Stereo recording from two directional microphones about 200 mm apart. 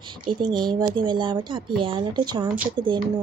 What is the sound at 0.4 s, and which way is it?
Speech, 20° right (ahead or behind).